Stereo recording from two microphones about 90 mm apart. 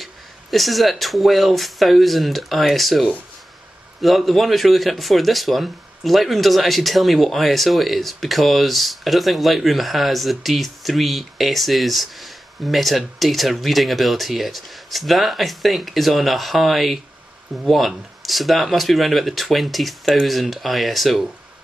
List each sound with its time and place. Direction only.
0.0 s speech: centre (ahead or behind)